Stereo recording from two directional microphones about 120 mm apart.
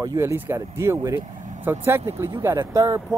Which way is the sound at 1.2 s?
90° right.